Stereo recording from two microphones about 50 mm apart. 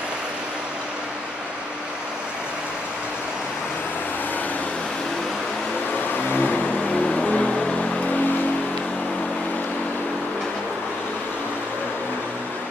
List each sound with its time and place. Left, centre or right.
6.1 s vehicle: left
6.9 s vehicle: centre